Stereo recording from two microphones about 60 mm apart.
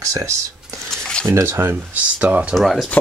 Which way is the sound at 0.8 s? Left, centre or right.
Centre.